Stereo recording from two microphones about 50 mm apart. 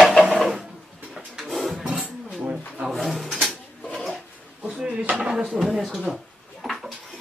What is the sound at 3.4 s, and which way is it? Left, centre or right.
Drawer open or close, centre.